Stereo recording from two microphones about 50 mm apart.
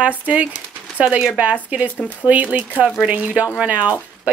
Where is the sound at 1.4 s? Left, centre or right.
Right.